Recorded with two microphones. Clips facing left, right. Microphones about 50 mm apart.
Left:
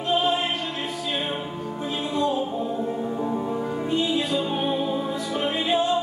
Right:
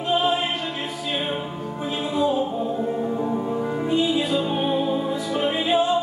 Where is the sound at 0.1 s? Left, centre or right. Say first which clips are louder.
Right 1 dB; centre.